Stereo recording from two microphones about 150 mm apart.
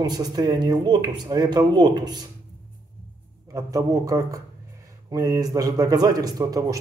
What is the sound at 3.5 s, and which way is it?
Speech, 20° right (ahead or behind).